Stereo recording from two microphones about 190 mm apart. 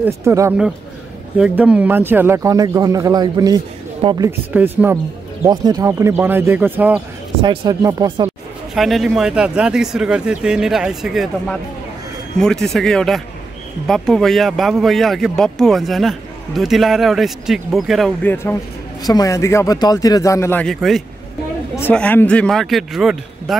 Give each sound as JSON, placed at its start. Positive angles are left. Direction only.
{"t": 0.0, "sound": "speech", "side_deg": -15}
{"t": 4.6, "sound": "speech", "side_deg": -10}
{"t": 7.4, "sound": "speech", "side_deg": -20}
{"t": 8.7, "sound": "speech", "side_deg": 0}